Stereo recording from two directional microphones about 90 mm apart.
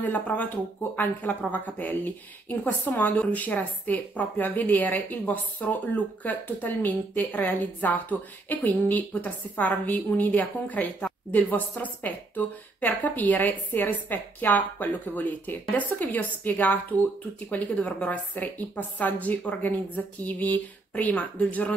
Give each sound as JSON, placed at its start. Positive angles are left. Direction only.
{"t": 0.0, "sound": "a woman's voice", "side_deg": 20}
{"t": 1.5, "sound": "a woman's voice", "side_deg": 20}